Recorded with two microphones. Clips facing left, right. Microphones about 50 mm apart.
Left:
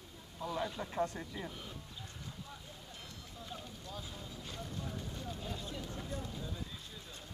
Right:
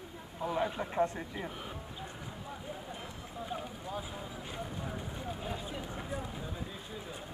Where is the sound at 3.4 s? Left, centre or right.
Right.